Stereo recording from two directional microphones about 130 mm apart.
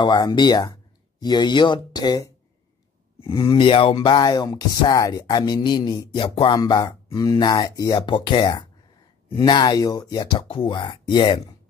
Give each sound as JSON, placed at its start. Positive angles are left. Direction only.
{"t": 0.0, "sound": "speech", "side_deg": 35}
{"t": 3.4, "sound": "speech", "side_deg": 45}
{"t": 3.9, "sound": "speech", "side_deg": 35}
{"t": 6.6, "sound": "speech", "side_deg": 30}
{"t": 10.5, "sound": "speech", "side_deg": 40}